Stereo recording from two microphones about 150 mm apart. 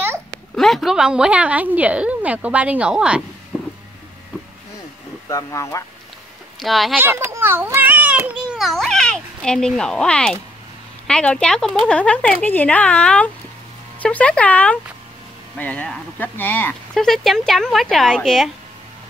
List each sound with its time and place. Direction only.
0.6 s a woman's voice: centre (ahead or behind)
5.3 s speech: 20° left (ahead or behind)
6.6 s a woman's voice: centre (ahead or behind)
7.0 s a child's voice: 15° right (ahead or behind); by 17.0 s 15° left (ahead or behind)
17.0 s a woman's voice: centre (ahead or behind)